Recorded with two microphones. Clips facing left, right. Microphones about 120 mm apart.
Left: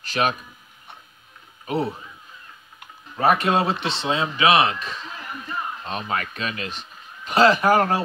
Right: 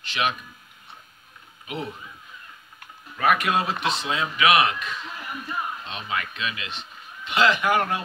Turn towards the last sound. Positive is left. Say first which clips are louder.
# left 5 dB
turn(degrees=35)  # may be behind; listen again after turning